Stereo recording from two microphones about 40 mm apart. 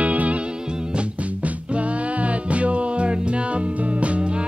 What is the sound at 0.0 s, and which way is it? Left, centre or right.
Music, right.